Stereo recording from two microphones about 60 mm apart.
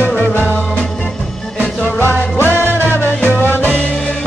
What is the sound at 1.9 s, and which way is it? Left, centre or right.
Music, left.